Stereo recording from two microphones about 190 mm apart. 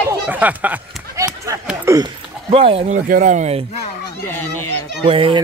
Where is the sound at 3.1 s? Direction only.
40° right (ahead or behind).